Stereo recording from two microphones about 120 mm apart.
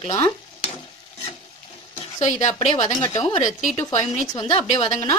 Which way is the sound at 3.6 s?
80° left.